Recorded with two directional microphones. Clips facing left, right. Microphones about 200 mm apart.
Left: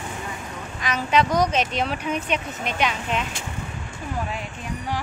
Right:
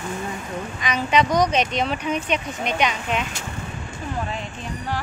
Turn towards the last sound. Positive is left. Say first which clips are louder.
# right 1 dB
turn(degrees=0)  # may be behind; listen again after turning